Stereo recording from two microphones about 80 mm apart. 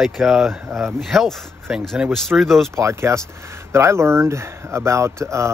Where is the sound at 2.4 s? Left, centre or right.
Centre.